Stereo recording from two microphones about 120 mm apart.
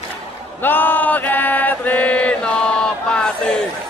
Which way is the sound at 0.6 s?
15° left (ahead or behind).